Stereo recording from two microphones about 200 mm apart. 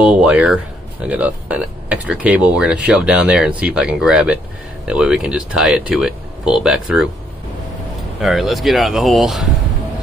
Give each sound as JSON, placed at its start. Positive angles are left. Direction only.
{"t": 0.0, "sound": "speech", "side_deg": -5}
{"t": 8.2, "sound": "speech", "side_deg": 0}